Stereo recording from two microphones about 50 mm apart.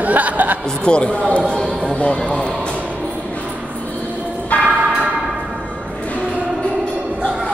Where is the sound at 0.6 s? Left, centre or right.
Centre.